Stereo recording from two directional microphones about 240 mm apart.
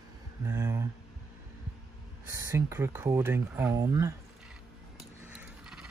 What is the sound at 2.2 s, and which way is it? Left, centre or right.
Speech, centre.